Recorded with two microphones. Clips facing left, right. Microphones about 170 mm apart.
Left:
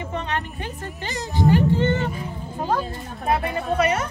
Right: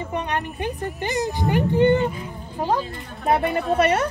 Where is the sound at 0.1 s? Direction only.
15° right (ahead or behind).